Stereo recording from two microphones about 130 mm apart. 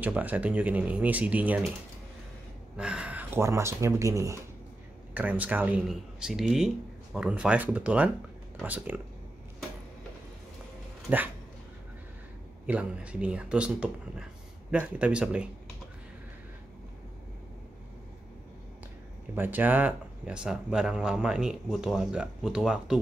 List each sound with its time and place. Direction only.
0.0 s speech: 10° right (ahead or behind)
2.8 s speech: 10° right (ahead or behind); by 4.4 s 25° right (ahead or behind)
5.1 s speech: 10° right (ahead or behind)
11.1 s speech: 10° right (ahead or behind)
12.6 s speech: 10° right (ahead or behind)
19.3 s speech: 15° right (ahead or behind)